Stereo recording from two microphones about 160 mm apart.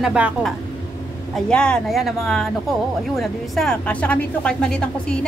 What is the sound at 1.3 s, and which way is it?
Speech, 5° left (ahead or behind).